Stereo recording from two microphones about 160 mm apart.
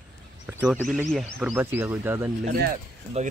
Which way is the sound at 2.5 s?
80° right.